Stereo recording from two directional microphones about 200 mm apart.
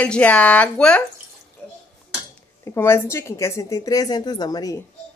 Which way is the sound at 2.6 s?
15° left (ahead or behind).